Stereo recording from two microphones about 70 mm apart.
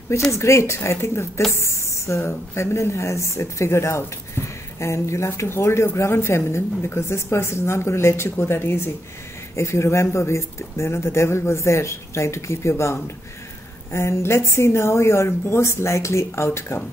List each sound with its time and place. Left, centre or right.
0.3 s speech: left